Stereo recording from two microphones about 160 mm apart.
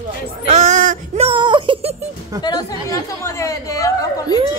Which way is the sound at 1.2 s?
30° right (ahead or behind).